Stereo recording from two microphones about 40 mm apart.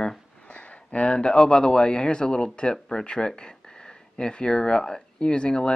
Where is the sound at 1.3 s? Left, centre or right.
Centre.